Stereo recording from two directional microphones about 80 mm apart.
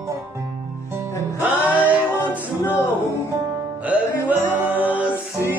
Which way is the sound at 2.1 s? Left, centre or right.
Left.